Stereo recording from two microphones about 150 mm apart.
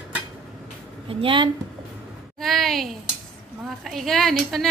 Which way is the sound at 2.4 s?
Centre (ahead or behind).